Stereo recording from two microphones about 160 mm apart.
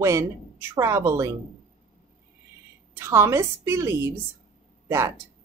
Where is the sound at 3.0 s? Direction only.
15° right (ahead or behind).